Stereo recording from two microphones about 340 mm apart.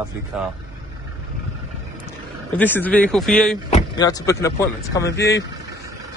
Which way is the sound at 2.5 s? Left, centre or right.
Centre.